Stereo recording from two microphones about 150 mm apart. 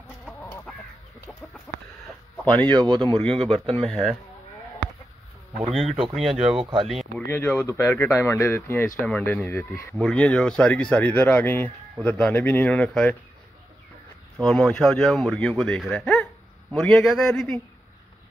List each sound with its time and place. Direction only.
0.2 s chicken: 10° left (ahead or behind)
2.4 s a man's voice: 10° left (ahead or behind)
2.8 s speech: 35° right (ahead or behind)
3.2 s speech: 5° left (ahead or behind)
3.4 s speech: 40° right (ahead or behind)
3.7 s speech: 5° left (ahead or behind)
5.7 s speech: centre (ahead or behind)
6.6 s speech: 35° right (ahead or behind)
6.9 s speech: centre (ahead or behind)
7.2 s a man's voice: 15° left (ahead or behind)
14.4 s speech: 5° left (ahead or behind)